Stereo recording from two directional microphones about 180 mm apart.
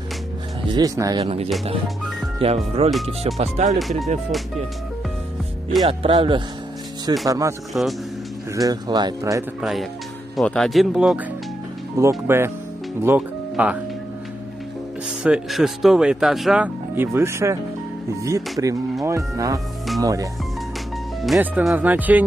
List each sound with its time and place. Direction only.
0.7 s speech: 20° right (ahead or behind)
1.2 s speech: 35° right (ahead or behind)
5.9 s speech: 30° right (ahead or behind)
7.2 s speech: 20° right (ahead or behind)
7.7 s speech: 10° right (ahead or behind)
8.5 s speech: 20° right (ahead or behind)
9.6 s speech: centre (ahead or behind)
15.2 s speech: 5° right (ahead or behind); by 20.2 s 20° right (ahead or behind)
21.2 s speech: 5° right (ahead or behind)